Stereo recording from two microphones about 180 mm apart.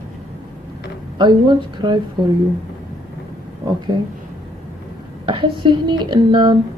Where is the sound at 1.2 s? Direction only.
25° right (ahead or behind).